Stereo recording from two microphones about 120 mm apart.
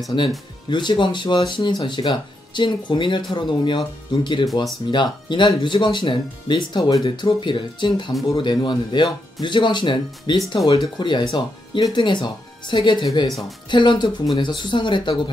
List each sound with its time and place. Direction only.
0.7 s speech: 40° left (ahead or behind)
13.3 s speech: centre (ahead or behind)
13.7 s speech: 40° left (ahead or behind)